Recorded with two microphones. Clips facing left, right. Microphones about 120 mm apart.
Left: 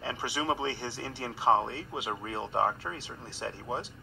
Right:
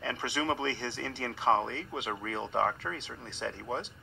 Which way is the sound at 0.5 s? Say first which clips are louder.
Even; 10° left (ahead or behind).